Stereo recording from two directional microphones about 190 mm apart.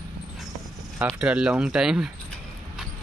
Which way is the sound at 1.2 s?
5° right (ahead or behind).